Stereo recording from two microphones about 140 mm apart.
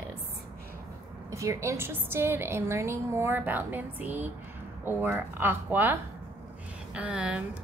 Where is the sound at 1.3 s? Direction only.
20° right (ahead or behind).